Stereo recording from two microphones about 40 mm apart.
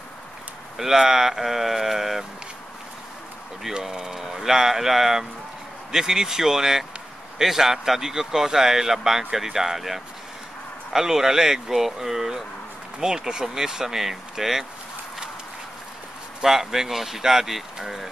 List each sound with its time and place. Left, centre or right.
0.7 s speech: centre
3.8 s speech: centre
16.4 s speech: centre